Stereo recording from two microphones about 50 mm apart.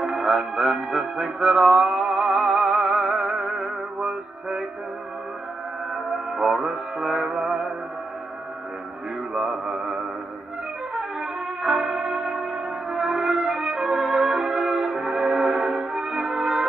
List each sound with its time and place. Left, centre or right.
0.0 s music: centre
6.1 s music: centre
9.3 s mantra: centre
11.0 s music: centre